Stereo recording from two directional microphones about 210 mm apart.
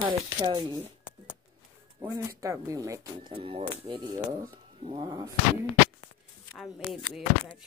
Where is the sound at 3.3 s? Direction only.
25° right (ahead or behind).